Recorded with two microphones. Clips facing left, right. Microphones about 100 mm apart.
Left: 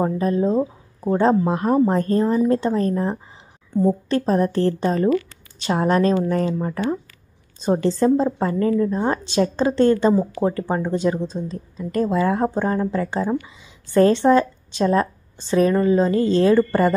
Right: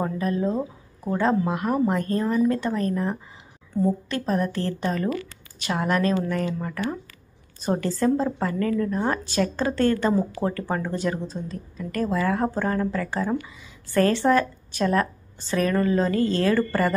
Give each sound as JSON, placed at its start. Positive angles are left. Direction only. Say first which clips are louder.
{"t": 0.0, "sound": "a woman's voice", "louder": "left 5 dB", "side_deg": 30}